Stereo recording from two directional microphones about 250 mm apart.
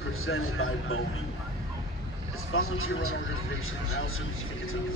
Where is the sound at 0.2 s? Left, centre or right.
Left.